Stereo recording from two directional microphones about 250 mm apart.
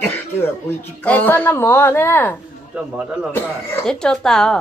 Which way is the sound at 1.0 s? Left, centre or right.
Centre.